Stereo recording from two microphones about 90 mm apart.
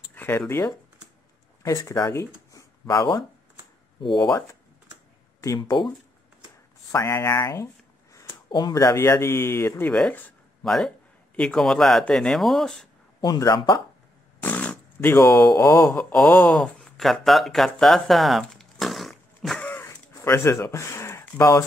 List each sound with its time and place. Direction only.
0.1 s a sound: 20° left (ahead or behind)
0.5 s speech: 30° left (ahead or behind); by 4.3 s 55° left (ahead or behind)
5.6 s speech: 55° left (ahead or behind)
6.9 s speech: 35° left (ahead or behind)
8.5 s speech: 55° left (ahead or behind)
8.7 s speech: 35° left (ahead or behind)
9.8 s speech: 10° left (ahead or behind)
13.2 s speech: 45° left (ahead or behind)
14.4 s a sound: 15° left (ahead or behind)
15.1 s speech: 35° left (ahead or behind)
15.9 s speech: 10° left (ahead or behind)
19.8 s a sound: 35° left (ahead or behind)